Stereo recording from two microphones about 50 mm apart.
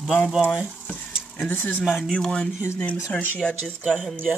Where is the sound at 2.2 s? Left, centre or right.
Centre.